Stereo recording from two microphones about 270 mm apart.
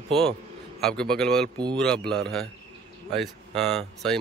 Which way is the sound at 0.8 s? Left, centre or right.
Centre.